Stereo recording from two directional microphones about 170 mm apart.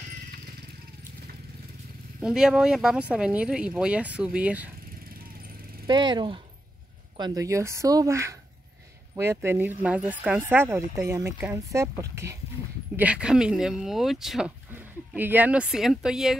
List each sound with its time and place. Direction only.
2.1 s speech: 5° right (ahead or behind)
5.9 s speech: 25° right (ahead or behind); by 16.3 s 5° right (ahead or behind)